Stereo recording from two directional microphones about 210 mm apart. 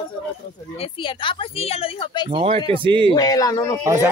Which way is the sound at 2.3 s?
25° right (ahead or behind).